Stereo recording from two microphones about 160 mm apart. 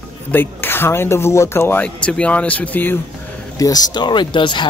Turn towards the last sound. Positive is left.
turn(degrees=30)  # may be behind; listen again after turning